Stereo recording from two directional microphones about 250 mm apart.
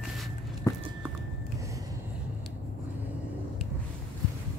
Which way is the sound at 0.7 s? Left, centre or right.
Centre.